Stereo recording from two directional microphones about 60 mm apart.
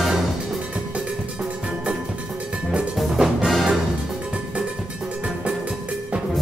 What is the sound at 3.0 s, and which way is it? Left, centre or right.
Music, centre.